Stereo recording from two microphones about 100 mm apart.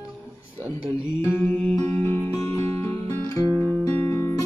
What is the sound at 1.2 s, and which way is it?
Music, 25° left (ahead or behind).